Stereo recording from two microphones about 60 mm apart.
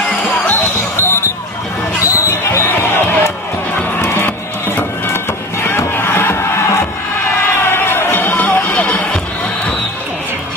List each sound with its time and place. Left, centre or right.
2.0 s basketball bounce: left
4.7 s music: left
7.6 s music: left
8.7 s music: centre